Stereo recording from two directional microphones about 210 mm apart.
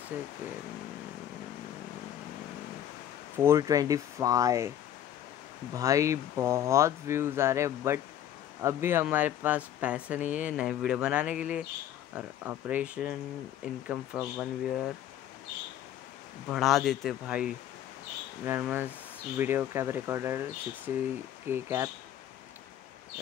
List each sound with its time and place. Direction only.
3.3 s speech: 15° right (ahead or behind)
5.8 s speech: 15° right (ahead or behind)
16.4 s speech: centre (ahead or behind)